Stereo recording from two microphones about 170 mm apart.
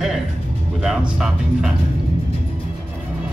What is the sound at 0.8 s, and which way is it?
Speech, 5° right (ahead or behind).